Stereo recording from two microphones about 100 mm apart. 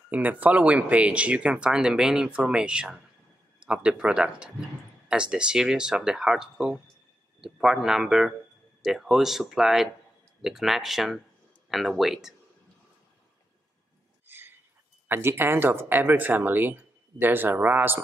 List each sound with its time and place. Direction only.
0.1 s speech: 15° right (ahead or behind)
14.2 s a sound: 20° right (ahead or behind)
15.0 s speech: 25° right (ahead or behind)